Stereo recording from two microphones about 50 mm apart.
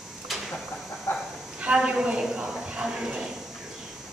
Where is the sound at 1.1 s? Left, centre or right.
Left.